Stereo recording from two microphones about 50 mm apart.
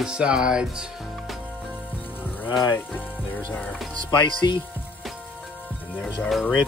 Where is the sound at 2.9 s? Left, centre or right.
Left.